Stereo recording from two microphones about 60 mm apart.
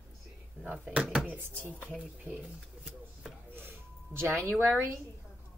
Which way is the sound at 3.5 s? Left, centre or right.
Right.